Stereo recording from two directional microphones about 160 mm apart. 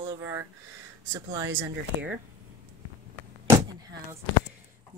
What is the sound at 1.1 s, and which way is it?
Speech, 20° right (ahead or behind).